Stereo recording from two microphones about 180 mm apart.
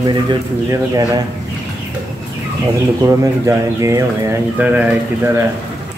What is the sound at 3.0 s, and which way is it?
Speech, 15° right (ahead or behind).